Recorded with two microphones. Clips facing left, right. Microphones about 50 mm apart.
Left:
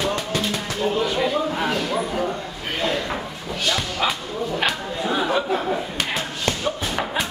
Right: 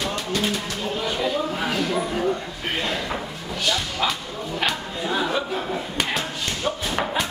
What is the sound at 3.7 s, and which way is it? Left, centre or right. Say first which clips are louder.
Music: left 1 dB; centre.